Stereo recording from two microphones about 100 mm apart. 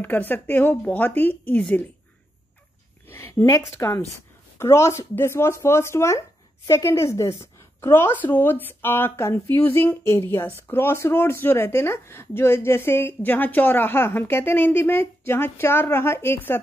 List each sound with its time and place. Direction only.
0.0 s speech: 20° left (ahead or behind)
3.1 s a woman's voice: 25° left (ahead or behind)